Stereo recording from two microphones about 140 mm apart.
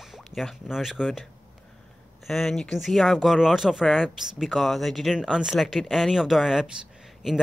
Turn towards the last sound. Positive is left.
turn(degrees=0)  # may be behind; listen again after turning